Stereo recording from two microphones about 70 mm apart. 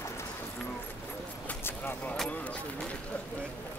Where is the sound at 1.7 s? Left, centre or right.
Left.